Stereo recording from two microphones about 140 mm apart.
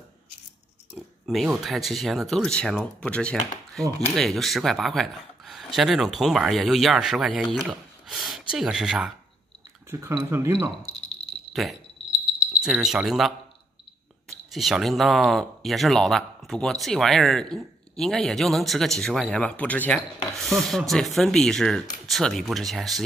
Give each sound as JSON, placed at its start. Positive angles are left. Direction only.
{"t": 0.9, "sound": "speech", "side_deg": -5}
{"t": 9.8, "sound": "speech", "side_deg": -15}
{"t": 11.6, "sound": "speech", "side_deg": 0}
{"t": 14.5, "sound": "speech", "side_deg": 0}